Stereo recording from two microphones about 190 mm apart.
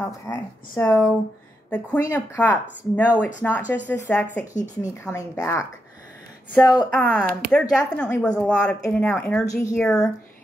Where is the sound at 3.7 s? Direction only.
10° left (ahead or behind).